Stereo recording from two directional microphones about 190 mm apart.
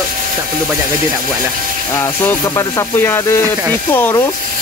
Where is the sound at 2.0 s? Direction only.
10° left (ahead or behind).